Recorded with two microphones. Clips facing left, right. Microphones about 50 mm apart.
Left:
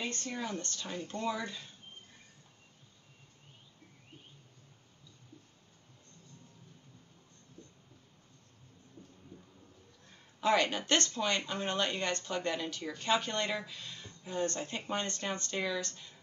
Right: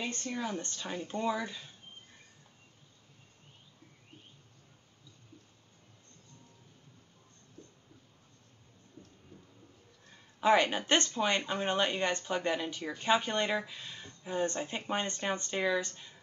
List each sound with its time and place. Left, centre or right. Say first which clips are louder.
0.0 s a sound: right 1 dB; centre
0.3 s speech: right 4 dB; centre
0.6 s speech: right 1 dB; centre
10.4 s speech: right 3 dB; centre